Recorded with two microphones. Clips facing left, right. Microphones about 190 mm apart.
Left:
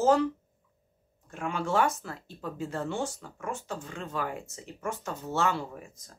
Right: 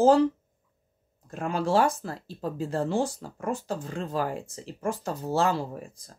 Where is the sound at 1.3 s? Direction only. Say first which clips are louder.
Right 4 dB; 35° right (ahead or behind).